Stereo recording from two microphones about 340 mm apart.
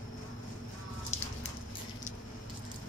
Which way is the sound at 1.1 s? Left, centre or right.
Centre.